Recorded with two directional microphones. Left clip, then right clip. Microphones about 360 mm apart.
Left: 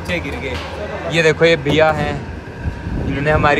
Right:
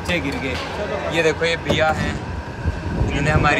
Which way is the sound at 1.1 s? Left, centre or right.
Centre.